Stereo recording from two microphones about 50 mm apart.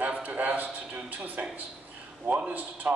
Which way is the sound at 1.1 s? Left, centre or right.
Right.